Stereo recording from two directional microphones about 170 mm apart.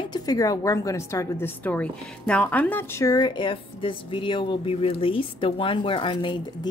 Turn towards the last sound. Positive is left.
turn(degrees=30)  # may be behind; listen again after turning